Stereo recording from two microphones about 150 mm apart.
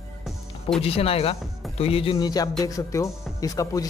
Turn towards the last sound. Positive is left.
turn(degrees=25)  # may be behind; listen again after turning